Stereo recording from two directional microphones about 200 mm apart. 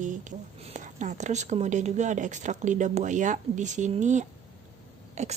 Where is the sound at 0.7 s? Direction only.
40° right (ahead or behind).